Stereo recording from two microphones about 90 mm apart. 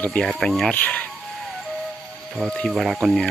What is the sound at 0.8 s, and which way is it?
Speech, 15° left (ahead or behind).